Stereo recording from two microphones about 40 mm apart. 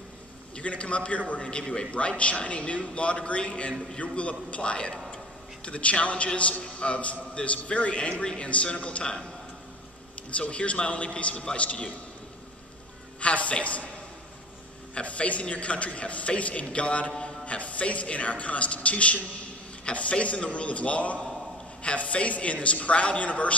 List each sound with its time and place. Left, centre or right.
0.6 s a man's voice: left
10.3 s a woman's voice: left
13.2 s a woman's voice: left
15.0 s a woman's voice: left